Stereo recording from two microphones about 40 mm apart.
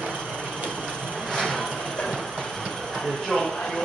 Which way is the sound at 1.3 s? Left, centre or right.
Centre.